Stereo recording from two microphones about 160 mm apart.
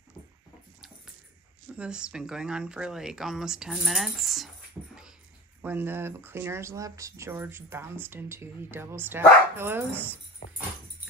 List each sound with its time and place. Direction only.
1.8 s speech: 5° right (ahead or behind)
5.6 s speech: 10° right (ahead or behind)
10.4 s dog: 45° left (ahead or behind)